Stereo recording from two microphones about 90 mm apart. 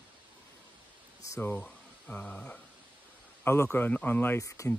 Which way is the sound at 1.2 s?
30° left (ahead or behind).